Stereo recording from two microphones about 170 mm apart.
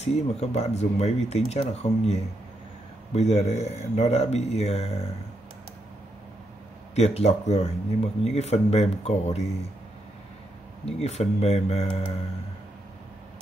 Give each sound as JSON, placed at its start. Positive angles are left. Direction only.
{"t": 0.0, "sound": "speech", "side_deg": 40}
{"t": 3.2, "sound": "speech", "side_deg": 40}
{"t": 7.0, "sound": "speech", "side_deg": 40}
{"t": 10.9, "sound": "speech", "side_deg": 40}